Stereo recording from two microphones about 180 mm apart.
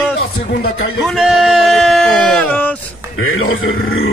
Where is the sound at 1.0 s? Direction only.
Centre (ahead or behind).